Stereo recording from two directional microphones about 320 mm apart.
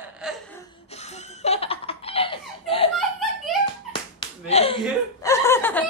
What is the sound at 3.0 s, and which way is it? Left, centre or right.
Laughter, centre.